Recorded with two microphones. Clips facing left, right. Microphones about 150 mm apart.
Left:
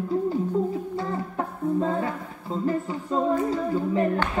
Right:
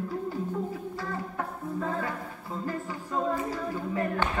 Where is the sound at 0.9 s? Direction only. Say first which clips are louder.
Left 6 dB; 25° left (ahead or behind).